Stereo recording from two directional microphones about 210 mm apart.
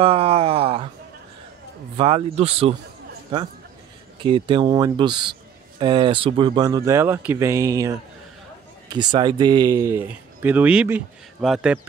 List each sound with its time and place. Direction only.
0.0 s a sound: 30° right (ahead or behind)
2.0 s a man's voice: 30° right (ahead or behind)
4.2 s a man's voice: 25° right (ahead or behind); by 11.8 s 5° right (ahead or behind)